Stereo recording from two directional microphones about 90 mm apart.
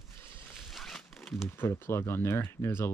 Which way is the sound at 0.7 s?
Centre (ahead or behind).